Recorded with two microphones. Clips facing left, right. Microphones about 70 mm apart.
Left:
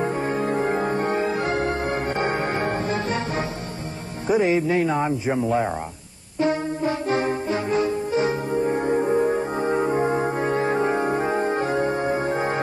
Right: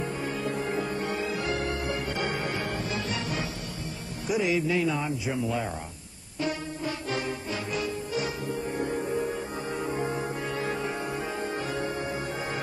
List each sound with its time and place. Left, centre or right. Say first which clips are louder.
0.0 s music: left 8 dB; left
4.3 s speech: left 7 dB; left
6.4 s brass instrument: left 9 dB; left